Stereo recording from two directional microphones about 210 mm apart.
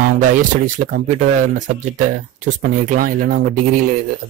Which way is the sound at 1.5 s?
35° right (ahead or behind).